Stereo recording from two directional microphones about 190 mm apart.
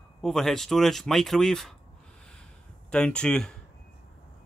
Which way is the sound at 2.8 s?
5° left (ahead or behind).